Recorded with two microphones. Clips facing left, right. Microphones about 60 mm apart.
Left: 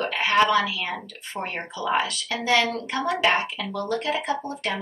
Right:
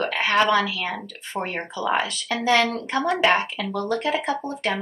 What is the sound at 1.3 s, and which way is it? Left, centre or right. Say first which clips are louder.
Speech: right 3 dB; right.